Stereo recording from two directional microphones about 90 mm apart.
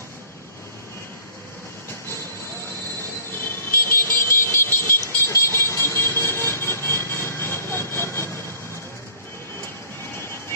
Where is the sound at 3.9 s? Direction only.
25° left (ahead or behind).